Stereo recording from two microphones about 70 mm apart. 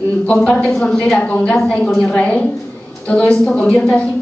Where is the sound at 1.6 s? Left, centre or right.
Centre.